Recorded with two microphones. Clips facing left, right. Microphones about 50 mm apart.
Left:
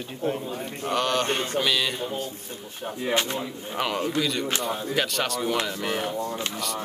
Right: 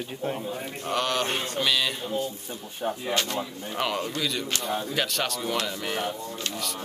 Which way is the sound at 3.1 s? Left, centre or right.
Left.